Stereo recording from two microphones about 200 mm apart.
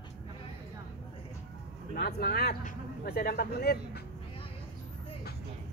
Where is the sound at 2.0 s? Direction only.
50° left (ahead or behind).